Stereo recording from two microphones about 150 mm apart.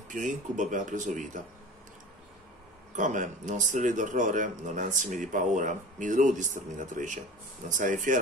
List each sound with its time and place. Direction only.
0.1 s speech: 60° right (ahead or behind)
3.0 s speech: 60° right (ahead or behind)